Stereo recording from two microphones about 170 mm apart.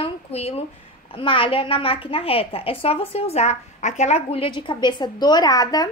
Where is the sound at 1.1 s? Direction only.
30° left (ahead or behind).